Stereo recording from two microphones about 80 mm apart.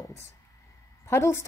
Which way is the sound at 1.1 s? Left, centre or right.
Left.